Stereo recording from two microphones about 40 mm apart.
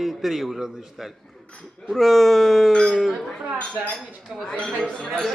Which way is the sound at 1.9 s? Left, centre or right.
Centre.